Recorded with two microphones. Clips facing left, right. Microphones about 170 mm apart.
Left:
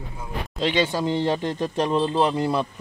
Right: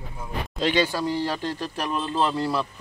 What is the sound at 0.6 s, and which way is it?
Speech, 20° left (ahead or behind).